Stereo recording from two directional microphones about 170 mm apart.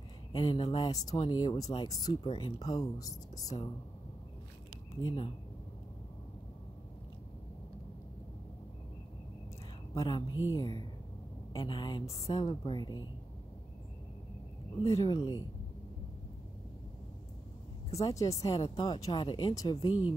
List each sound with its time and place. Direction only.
0.3 s speech: 30° left (ahead or behind)
5.0 s speech: 30° left (ahead or behind)
9.9 s speech: 25° left (ahead or behind)
14.9 s speech: 20° left (ahead or behind)
18.1 s speech: 20° left (ahead or behind)